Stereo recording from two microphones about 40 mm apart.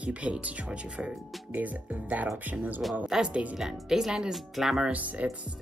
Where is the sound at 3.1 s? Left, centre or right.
Centre.